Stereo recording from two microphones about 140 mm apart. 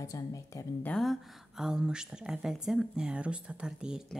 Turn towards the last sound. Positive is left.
turn(degrees=-5)  # may be behind; listen again after turning